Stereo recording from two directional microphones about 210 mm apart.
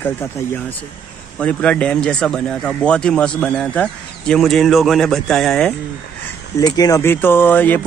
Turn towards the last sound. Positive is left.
turn(degrees=10)  # may be behind; listen again after turning